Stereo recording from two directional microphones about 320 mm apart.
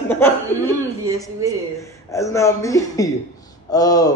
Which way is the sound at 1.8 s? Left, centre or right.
Centre.